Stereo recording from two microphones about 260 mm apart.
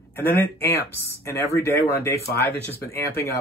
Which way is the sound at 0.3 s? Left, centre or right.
Centre.